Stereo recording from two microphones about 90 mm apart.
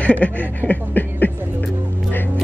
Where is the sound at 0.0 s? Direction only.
15° left (ahead or behind).